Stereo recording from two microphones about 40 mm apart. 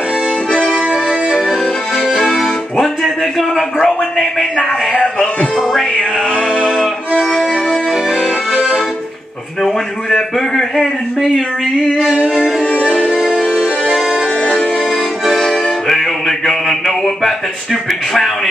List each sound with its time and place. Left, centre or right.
1.5 s accordion: centre
5.6 s music: centre
7.2 s music: centre
9.6 s a man's voice: centre
12.6 s music: left
13.6 s music: centre
15.3 s music: centre